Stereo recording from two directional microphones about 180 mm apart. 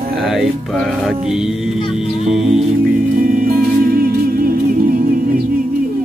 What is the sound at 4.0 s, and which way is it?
Music, 55° right (ahead or behind).